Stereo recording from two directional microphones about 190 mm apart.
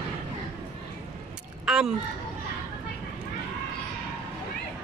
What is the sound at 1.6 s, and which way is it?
Speech, 5° right (ahead or behind).